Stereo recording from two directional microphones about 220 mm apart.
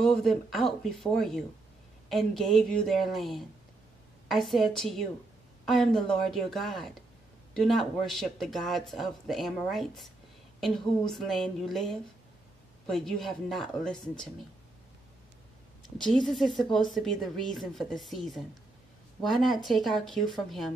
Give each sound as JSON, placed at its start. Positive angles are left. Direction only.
{"t": 0.0, "sound": "speech", "side_deg": 0}
{"t": 16.0, "sound": "speech", "side_deg": 0}